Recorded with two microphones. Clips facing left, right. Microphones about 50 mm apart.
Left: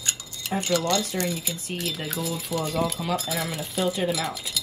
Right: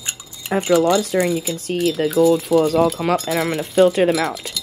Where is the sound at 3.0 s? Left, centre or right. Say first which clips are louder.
Right 9 dB; right.